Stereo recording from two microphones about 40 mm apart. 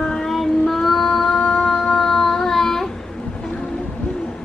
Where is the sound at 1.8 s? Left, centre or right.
Centre.